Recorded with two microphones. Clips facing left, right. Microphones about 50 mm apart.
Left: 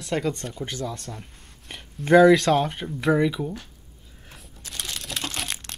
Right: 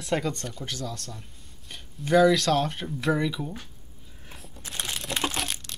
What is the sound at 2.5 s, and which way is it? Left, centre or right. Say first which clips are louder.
Speech: left 3 dB; centre.